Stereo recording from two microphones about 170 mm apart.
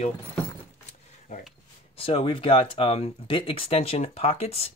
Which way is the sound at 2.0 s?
35° left (ahead or behind).